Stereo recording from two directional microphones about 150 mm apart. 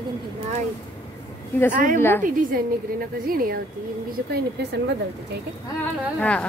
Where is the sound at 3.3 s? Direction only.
75° right (ahead or behind).